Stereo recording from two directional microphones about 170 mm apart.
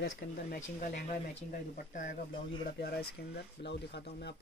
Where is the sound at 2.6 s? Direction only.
70° left (ahead or behind); by 4.4 s 85° left.